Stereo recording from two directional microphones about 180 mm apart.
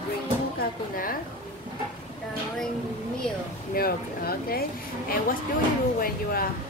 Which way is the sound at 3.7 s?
55° left (ahead or behind).